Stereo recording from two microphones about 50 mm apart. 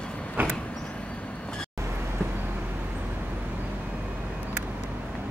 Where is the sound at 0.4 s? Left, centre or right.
Right.